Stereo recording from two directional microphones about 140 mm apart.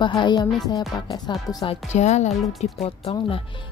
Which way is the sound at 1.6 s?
55° left (ahead or behind).